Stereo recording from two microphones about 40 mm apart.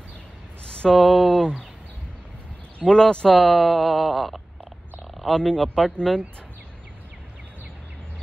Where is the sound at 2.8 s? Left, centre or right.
Centre.